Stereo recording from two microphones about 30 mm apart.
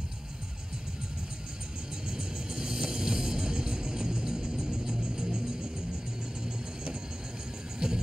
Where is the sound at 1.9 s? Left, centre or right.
Right.